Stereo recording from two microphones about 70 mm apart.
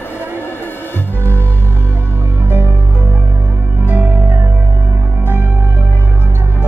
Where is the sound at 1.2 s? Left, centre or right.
Left.